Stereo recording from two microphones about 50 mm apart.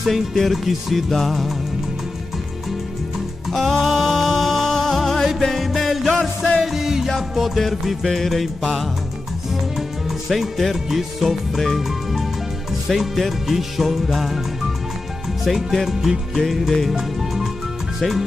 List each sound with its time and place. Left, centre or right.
0.1 s music: centre
3.4 s music: centre
6.1 s music: left
6.6 s music: centre
15.4 s music: centre